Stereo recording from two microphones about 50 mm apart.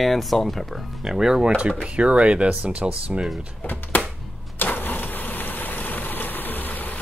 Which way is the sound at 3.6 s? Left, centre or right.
Left.